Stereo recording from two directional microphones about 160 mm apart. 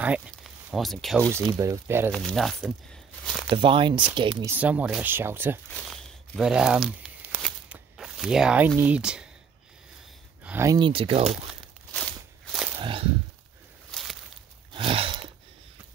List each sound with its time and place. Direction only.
0.0 s speech: 5° right (ahead or behind)
1.5 s speech: 20° right (ahead or behind)
2.1 s speech: centre (ahead or behind)
3.4 s speech: 30° right (ahead or behind)
4.5 s speech: 10° right (ahead or behind)
5.7 s crumpling: 5° left (ahead or behind)
7.7 s speech: 5° right (ahead or behind)
10.4 s speech: 15° right (ahead or behind)
10.8 s speech: 35° right (ahead or behind)
11.9 s walk: 5° left (ahead or behind)
12.7 s a sound: 30° right (ahead or behind)
14.7 s a sound: 35° right (ahead or behind)